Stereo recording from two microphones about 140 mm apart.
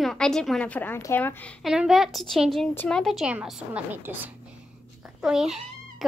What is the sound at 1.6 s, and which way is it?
A woman's voice, 5° right (ahead or behind).